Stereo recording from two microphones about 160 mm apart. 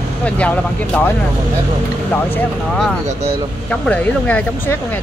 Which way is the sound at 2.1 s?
10° left (ahead or behind).